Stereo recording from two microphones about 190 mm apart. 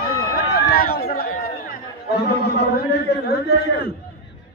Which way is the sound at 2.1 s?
60° left (ahead or behind).